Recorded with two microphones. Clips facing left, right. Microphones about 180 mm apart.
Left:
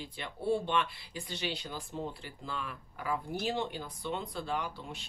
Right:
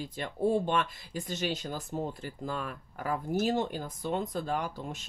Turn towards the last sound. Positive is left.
turn(degrees=-45)  # may be behind; listen again after turning